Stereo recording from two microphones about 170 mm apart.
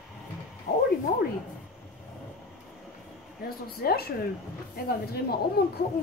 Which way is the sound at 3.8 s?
65° left (ahead or behind).